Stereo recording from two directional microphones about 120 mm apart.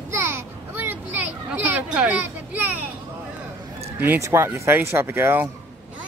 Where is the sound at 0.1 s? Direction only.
20° right (ahead or behind).